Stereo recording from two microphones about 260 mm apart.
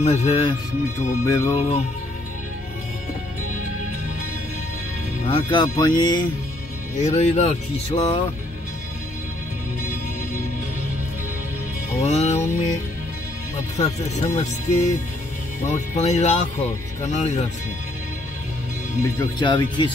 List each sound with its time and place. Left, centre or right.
0.0 s speech: left
5.3 s speech: centre
7.0 s speech: left
12.0 s speech: left
13.7 s speech: left
19.1 s speech: centre